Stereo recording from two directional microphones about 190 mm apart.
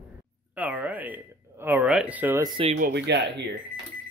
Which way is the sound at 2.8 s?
60° right (ahead or behind).